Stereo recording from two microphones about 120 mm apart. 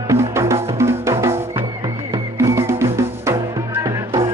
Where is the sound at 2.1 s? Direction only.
25° right (ahead or behind).